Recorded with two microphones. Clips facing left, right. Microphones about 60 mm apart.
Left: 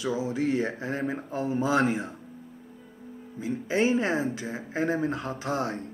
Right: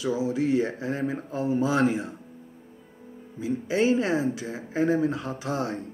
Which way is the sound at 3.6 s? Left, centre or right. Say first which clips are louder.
Right 1 dB; left.